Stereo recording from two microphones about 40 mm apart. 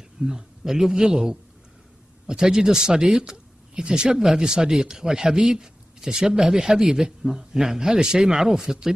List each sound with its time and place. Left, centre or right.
0.2 s speech: centre